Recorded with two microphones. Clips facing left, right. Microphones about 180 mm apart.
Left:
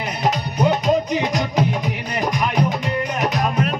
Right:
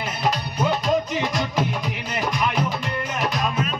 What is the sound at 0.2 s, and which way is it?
Music, 20° left (ahead or behind).